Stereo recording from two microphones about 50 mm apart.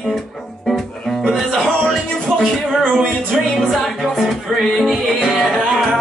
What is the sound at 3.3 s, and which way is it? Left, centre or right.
Music, centre.